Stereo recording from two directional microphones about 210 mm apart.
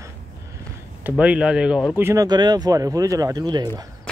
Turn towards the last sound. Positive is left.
turn(degrees=-20)  # may be behind; listen again after turning